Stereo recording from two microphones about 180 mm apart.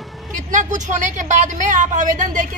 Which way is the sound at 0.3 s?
45° right (ahead or behind).